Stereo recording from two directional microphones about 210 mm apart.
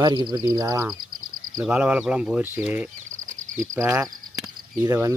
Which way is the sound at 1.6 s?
5° right (ahead or behind).